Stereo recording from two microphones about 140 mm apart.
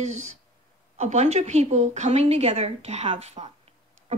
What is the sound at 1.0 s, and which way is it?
A woman's voice, 55° right (ahead or behind).